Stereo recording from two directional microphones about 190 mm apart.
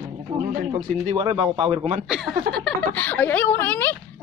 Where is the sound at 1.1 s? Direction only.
25° right (ahead or behind).